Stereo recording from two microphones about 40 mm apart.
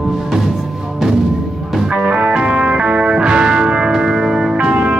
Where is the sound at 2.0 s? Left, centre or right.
Centre.